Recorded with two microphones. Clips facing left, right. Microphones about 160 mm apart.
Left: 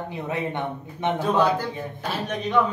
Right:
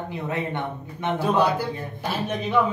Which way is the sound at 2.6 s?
5° right (ahead or behind).